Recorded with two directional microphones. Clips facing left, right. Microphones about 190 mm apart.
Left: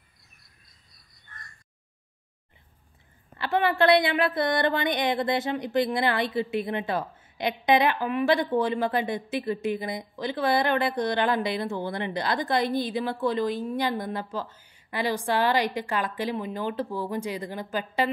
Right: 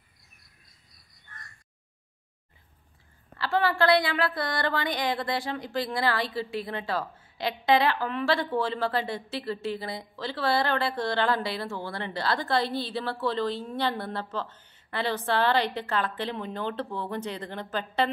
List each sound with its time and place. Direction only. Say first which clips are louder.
3.3 s a woman's voice: left 2 dB; 20° left (ahead or behind)